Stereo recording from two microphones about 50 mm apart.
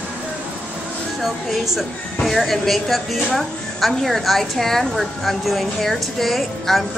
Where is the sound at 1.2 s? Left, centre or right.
Centre.